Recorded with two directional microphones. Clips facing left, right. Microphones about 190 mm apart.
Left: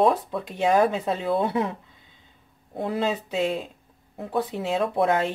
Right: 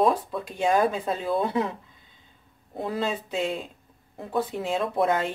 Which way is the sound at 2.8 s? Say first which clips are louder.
Left 2 dB; 20° left (ahead or behind).